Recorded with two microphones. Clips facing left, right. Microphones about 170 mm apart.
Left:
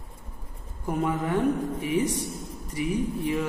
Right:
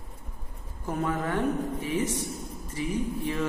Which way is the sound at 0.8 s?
15° left (ahead or behind).